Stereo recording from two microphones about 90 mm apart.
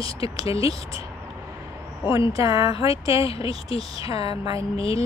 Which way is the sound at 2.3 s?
40° right (ahead or behind).